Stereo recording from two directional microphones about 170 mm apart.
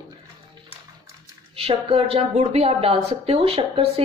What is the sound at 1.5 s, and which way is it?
A woman's voice, 35° right (ahead or behind).